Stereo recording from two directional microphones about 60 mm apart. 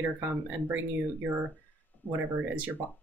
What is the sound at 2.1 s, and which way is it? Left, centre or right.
Speech, right.